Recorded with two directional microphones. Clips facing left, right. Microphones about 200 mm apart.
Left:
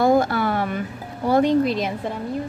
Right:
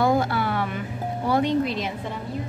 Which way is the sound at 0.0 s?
45° left (ahead or behind).